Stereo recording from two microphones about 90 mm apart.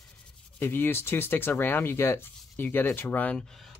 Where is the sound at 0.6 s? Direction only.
20° left (ahead or behind).